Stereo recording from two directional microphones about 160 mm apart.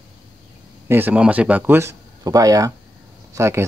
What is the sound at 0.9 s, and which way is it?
Speech, 10° right (ahead or behind).